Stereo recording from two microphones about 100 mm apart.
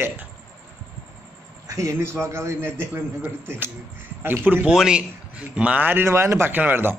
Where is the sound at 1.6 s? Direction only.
30° right (ahead or behind).